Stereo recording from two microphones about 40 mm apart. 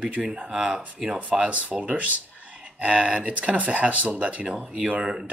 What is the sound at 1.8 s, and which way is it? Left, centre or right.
Speech, right.